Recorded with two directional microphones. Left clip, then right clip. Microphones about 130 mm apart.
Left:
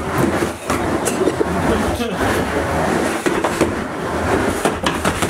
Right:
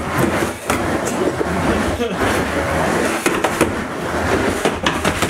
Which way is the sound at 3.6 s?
15° right (ahead or behind).